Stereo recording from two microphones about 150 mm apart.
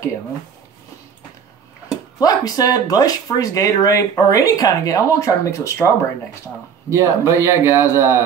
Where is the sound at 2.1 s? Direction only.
25° left (ahead or behind).